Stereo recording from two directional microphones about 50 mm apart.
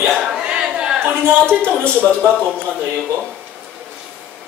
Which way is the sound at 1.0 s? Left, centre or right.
Right.